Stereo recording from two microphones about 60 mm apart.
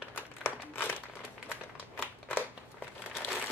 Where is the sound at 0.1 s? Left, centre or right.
Left.